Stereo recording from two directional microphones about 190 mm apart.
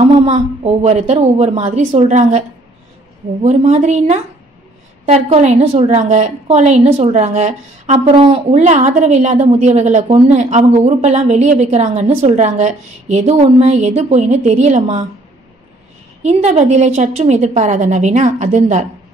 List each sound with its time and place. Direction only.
0.0 s a woman's voice: 35° right (ahead or behind)
3.4 s a woman's voice: 40° right (ahead or behind)
16.2 s a woman's voice: 35° right (ahead or behind)